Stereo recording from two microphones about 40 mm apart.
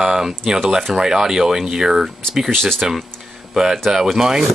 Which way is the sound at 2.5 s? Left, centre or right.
Centre.